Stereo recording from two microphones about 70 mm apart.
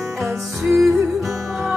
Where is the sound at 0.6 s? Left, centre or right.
Centre.